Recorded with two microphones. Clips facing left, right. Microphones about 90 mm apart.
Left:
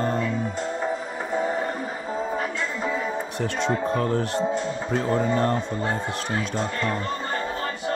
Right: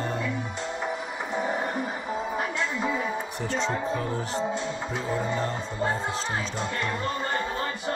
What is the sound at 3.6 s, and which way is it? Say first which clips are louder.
Speech: left 6 dB; 55° left (ahead or behind).